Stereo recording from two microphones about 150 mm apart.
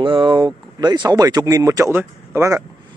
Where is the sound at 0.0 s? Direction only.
35° right (ahead or behind).